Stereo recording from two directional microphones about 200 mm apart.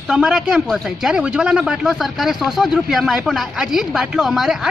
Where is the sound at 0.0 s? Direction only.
Centre (ahead or behind).